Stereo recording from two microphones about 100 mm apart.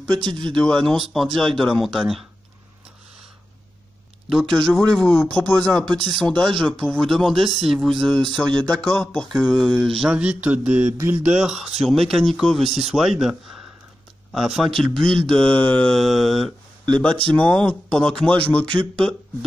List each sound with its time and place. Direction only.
0.1 s speech: 50° right (ahead or behind)
0.7 s speech: 5° left (ahead or behind)
4.3 s speech: centre (ahead or behind)
10.1 s mantra: 10° right (ahead or behind)
11.2 s speech: 5° right (ahead or behind); by 19.1 s 10° left (ahead or behind)